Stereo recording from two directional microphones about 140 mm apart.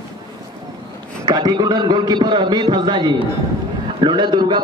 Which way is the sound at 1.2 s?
30° right (ahead or behind).